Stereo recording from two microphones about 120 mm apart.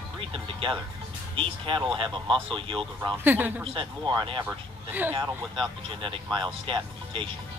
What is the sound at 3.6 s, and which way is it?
Speech, 45° right (ahead or behind).